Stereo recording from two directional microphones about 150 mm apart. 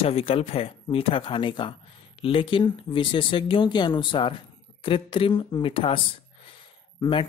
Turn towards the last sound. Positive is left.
turn(degrees=35)  # may be behind; listen again after turning